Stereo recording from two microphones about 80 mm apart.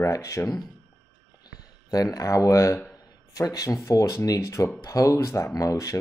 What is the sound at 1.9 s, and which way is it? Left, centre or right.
Speech, left.